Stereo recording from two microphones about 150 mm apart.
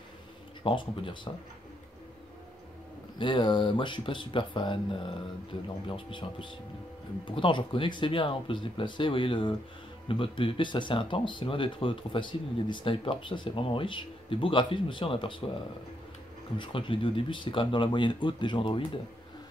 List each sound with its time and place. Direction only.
0.7 s speech: 35° left (ahead or behind)
3.2 s speech: 35° left (ahead or behind)
16.5 s speech: 35° left (ahead or behind)